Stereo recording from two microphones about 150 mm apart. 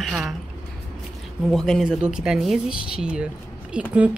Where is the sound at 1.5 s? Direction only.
Centre (ahead or behind).